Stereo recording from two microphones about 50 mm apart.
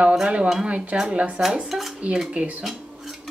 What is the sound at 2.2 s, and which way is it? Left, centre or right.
Speech, right.